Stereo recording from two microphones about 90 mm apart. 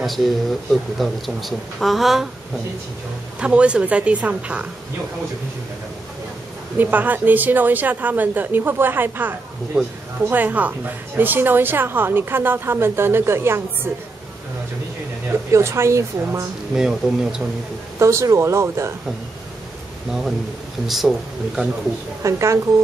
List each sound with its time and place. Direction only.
0.0 s speech: centre (ahead or behind)
3.3 s a woman's voice: 15° right (ahead or behind)
6.8 s a woman's voice: 20° right (ahead or behind)
9.8 s a woman's voice: 5° right (ahead or behind)
10.3 s a woman's voice: 20° right (ahead or behind)
15.5 s speech: 30° right (ahead or behind)
16.7 s a woman's voice: 5° right (ahead or behind)
17.9 s speech: 35° right (ahead or behind)
20.1 s speech: 5° right (ahead or behind)
22.2 s speech: 35° right (ahead or behind)